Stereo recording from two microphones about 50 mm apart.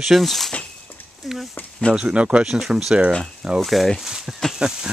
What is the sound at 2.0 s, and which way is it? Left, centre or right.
Speech, right.